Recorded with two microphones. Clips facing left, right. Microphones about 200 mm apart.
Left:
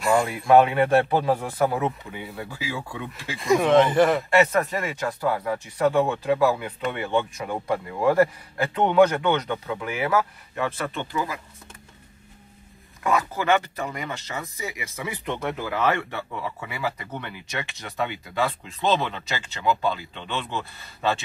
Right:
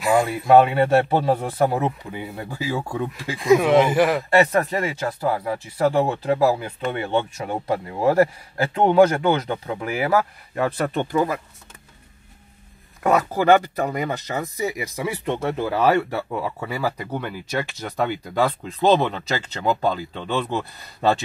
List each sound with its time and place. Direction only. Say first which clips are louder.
0.5 s speech: right 2 dB; 30° right (ahead or behind)
2.1 s speech: right 4 dB; 45° right (ahead or behind)
3.3 s speech: right 2 dB; 5° right (ahead or behind)
4.3 s speech: right 2 dB; 35° right (ahead or behind)
5.0 s speech: right 2 dB; 25° right (ahead or behind)
8.7 s speech: right 3 dB; 35° right (ahead or behind)
13.0 s speech: right 5 dB; 40° right (ahead or behind)